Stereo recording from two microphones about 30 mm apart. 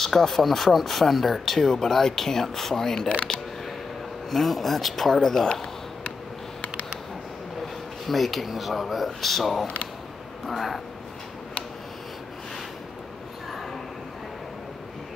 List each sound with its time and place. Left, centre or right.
0.0 s speech: centre
4.3 s speech: centre
5.1 s speech: centre
7.6 s a sound: centre
8.5 s speech: centre
9.2 s speech: centre